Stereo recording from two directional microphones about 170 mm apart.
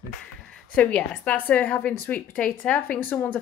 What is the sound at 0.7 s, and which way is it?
Speech, 5° left (ahead or behind).